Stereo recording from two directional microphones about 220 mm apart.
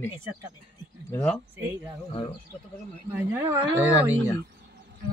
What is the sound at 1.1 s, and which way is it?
Speech, 5° left (ahead or behind).